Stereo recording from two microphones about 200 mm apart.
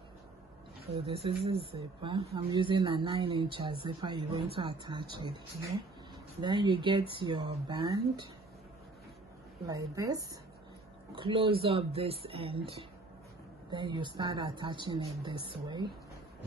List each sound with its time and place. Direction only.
0.8 s speech: 30° right (ahead or behind)
6.4 s speech: 25° right (ahead or behind)
9.7 s speech: 20° right (ahead or behind)